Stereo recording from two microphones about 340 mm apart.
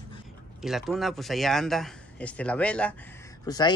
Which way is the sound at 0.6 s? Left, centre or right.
Centre.